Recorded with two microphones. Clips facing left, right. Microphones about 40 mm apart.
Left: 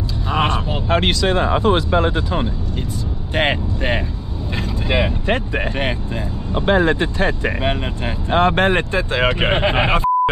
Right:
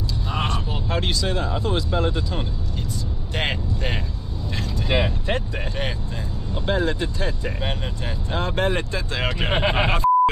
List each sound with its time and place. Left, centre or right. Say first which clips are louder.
0.3 s speech: left 8 dB; left
4.8 s speech: left 4 dB; left